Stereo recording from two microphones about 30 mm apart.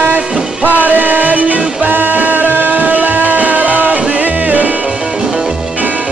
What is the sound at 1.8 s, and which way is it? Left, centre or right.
Music, right.